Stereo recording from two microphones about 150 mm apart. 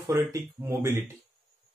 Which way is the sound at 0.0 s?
20° right (ahead or behind).